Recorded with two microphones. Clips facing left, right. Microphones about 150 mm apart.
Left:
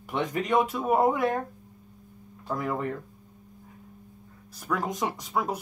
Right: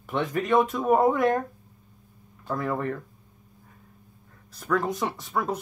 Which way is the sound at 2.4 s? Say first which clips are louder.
Right 2 dB; 15° left (ahead or behind).